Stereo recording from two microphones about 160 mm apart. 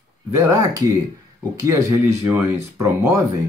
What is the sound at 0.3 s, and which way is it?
Speech, 20° right (ahead or behind).